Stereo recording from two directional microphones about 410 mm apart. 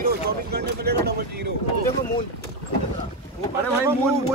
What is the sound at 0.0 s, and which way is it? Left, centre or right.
Vehicle, right.